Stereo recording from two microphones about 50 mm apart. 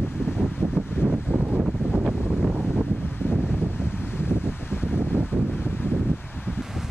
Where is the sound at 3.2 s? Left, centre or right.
Left.